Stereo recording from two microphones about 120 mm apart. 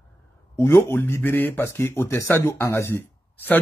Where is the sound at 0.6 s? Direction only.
20° left (ahead or behind).